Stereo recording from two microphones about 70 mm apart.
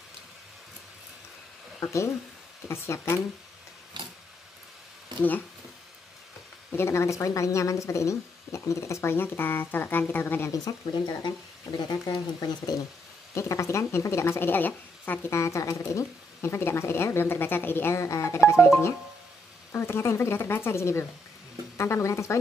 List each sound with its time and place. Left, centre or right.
1.8 s speech: left
6.7 s speech: left
10.5 s speech: left
13.3 s speech: left
15.3 s speech: left
17.9 s speech: left
19.7 s speech: left